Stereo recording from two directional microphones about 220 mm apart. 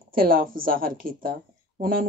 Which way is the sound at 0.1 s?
40° right (ahead or behind).